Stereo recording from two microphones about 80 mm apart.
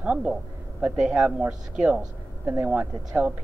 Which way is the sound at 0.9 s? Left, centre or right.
Centre.